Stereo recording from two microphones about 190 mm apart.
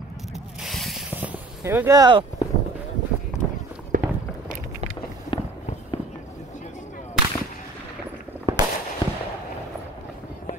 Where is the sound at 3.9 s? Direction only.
45° right (ahead or behind).